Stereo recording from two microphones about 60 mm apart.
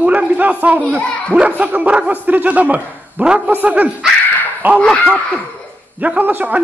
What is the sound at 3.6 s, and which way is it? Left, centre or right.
Speech, right.